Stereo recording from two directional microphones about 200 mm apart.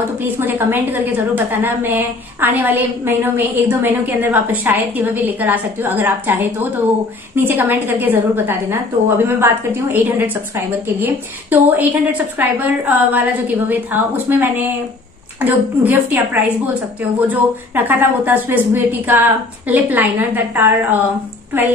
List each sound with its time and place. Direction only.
0.2 s a woman's voice: 10° right (ahead or behind)
17.3 s a woman's voice: 10° right (ahead or behind)